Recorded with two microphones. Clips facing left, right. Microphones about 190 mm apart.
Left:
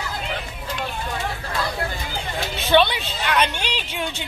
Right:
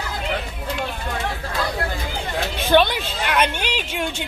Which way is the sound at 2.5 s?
50° right (ahead or behind).